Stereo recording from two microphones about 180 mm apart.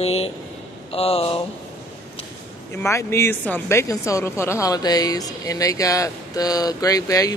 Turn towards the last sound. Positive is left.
turn(degrees=20)  # may be behind; listen again after turning